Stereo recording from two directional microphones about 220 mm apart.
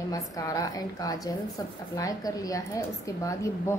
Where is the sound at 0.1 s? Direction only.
15° left (ahead or behind).